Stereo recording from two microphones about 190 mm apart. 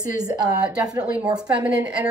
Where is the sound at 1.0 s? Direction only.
5° right (ahead or behind).